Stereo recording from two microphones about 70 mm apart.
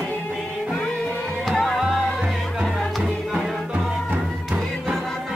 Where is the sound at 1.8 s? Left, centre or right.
Centre.